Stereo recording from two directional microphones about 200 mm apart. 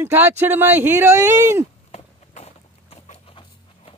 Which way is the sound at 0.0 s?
10° right (ahead or behind).